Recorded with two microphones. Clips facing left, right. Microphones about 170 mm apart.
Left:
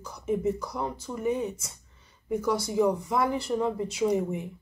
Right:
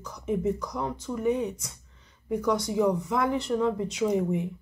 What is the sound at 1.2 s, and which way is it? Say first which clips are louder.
Speech: right 2 dB; 30° left (ahead or behind).